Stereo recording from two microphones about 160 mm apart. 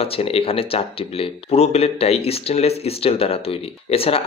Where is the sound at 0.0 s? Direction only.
35° left (ahead or behind).